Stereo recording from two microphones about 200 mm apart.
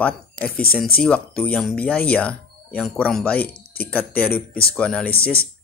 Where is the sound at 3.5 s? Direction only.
50° left (ahead or behind).